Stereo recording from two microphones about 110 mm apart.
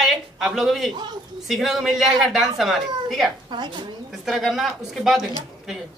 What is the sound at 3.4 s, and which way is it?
Speech, 45° right (ahead or behind).